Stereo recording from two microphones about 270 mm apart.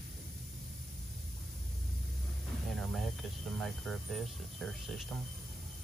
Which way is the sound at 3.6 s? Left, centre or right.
Centre.